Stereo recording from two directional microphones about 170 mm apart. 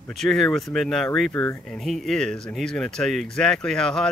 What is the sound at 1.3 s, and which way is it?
Speech, 15° left (ahead or behind).